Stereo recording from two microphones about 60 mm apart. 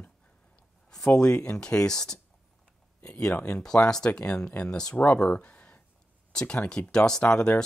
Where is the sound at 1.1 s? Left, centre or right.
Centre.